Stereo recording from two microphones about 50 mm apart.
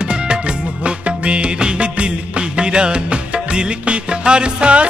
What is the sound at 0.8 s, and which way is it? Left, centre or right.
Music of bollywood, right.